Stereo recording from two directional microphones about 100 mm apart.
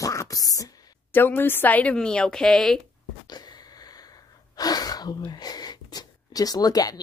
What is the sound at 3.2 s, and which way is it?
Sneeze, 45° left (ahead or behind).